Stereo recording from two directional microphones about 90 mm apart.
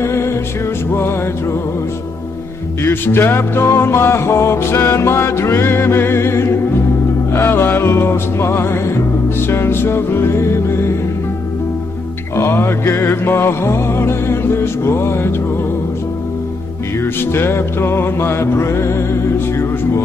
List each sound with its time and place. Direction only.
0.0 s music: 30° left (ahead or behind)
2.8 s music: 25° left (ahead or behind)
12.4 s music: 30° left (ahead or behind)
17.0 s music: 25° left (ahead or behind)